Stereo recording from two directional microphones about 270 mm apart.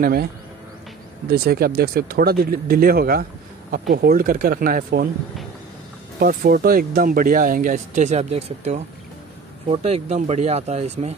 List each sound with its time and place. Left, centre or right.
0.0 s speech: right
1.3 s speech: right
6.1 s speech: right
10.0 s speech: right